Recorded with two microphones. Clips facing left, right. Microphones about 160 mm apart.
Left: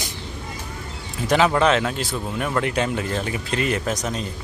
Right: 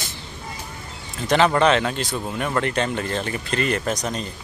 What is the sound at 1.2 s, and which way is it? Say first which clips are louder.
Speech: right 1 dB; 5° left (ahead or behind).